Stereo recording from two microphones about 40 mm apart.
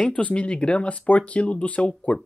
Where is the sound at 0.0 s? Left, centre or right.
Left.